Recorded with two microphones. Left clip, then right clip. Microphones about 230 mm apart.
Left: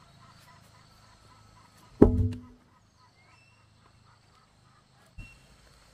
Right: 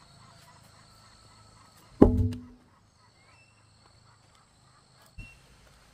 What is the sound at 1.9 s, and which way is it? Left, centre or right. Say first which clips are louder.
Music: even; centre.